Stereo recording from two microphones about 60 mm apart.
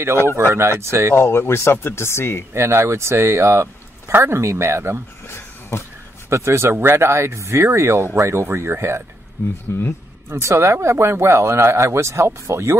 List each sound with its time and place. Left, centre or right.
0.2 s speech: left
0.5 s speech: right
1.1 s speech: left
2.5 s speech: right
5.2 s a sound: left
6.3 s speech: right
9.7 s speech: left
10.3 s speech: right